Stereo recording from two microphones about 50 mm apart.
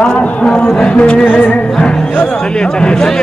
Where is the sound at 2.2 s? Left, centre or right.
Left.